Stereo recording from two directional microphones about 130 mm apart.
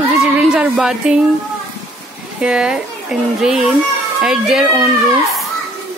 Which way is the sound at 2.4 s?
5° right (ahead or behind).